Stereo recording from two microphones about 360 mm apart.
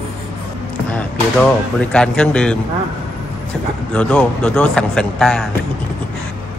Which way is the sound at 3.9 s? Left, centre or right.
Centre.